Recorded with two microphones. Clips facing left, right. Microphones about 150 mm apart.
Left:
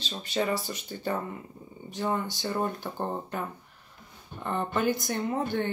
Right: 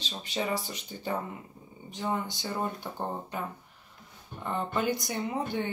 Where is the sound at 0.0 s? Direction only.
15° right (ahead or behind).